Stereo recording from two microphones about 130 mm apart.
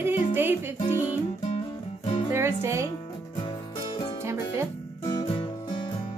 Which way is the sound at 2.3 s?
20° right (ahead or behind).